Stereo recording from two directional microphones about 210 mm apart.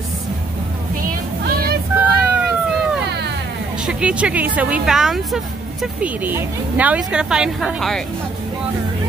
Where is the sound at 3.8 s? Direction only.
5° right (ahead or behind).